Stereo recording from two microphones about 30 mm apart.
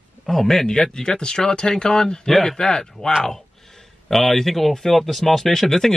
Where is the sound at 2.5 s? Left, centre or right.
Left.